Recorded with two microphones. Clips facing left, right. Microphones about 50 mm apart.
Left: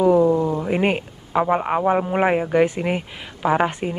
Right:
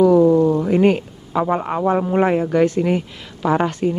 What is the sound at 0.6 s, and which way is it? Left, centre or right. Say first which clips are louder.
A man's voice: right 5 dB; left.